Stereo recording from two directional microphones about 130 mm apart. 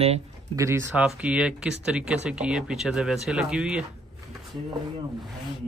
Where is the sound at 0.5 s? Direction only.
25° right (ahead or behind).